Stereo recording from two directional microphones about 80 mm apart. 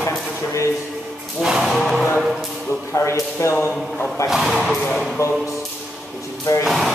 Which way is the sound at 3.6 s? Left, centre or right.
Left.